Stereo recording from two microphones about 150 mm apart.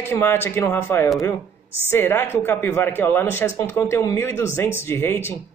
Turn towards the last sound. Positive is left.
turn(degrees=15)  # may be behind; listen again after turning